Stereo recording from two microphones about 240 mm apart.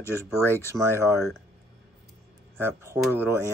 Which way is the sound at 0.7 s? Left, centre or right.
Centre.